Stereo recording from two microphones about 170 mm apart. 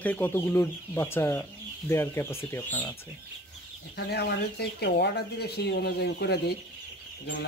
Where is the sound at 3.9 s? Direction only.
75° left (ahead or behind).